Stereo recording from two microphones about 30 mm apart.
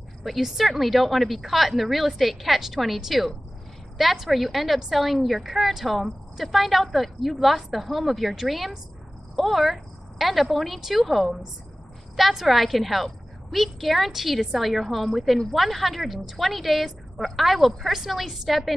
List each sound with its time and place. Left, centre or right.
0.2 s a woman's voice: centre